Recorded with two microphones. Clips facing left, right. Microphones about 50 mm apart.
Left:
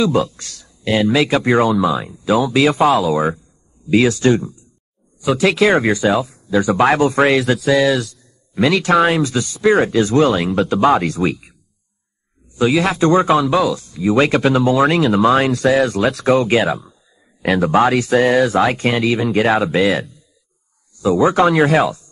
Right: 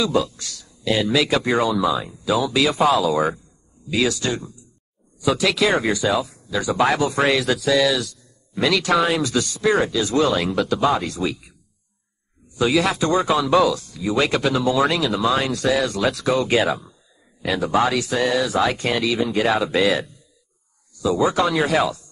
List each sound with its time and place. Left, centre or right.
0.0 s speech: left
3.9 s speech: left
9.8 s speech: left
10.8 s speech: left
12.7 s speech: left
13.5 s speech: centre
13.7 s speech: left
16.6 s speech: centre
17.4 s speech: left
19.7 s speech: left
21.3 s speech: left